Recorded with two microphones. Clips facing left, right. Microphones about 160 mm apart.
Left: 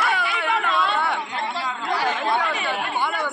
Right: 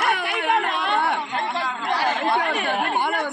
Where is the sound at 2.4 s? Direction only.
55° right (ahead or behind).